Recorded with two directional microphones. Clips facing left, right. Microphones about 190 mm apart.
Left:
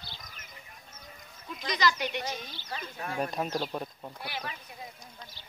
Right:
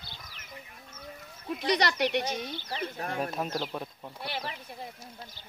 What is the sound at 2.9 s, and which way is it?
Speech, 45° right (ahead or behind).